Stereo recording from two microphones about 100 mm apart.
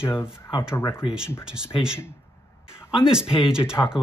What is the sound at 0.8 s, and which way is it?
Speech, 25° left (ahead or behind).